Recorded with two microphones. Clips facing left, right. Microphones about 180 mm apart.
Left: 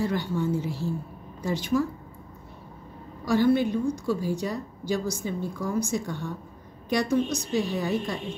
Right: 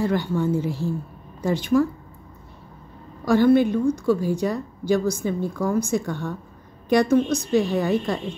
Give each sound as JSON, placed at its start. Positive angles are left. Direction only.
{"t": 0.0, "sound": "a woman's voice", "side_deg": -55}
{"t": 3.3, "sound": "a woman's voice", "side_deg": -55}